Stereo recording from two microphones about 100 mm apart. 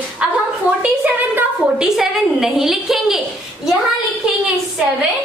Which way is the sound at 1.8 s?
5° right (ahead or behind).